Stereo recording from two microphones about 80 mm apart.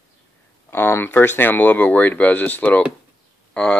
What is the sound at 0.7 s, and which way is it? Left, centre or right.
Speech, left.